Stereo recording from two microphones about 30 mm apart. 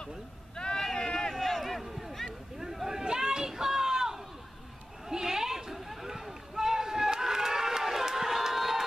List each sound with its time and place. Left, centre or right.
0.7 s run: centre
2.9 s a sound: centre
5.8 s run: centre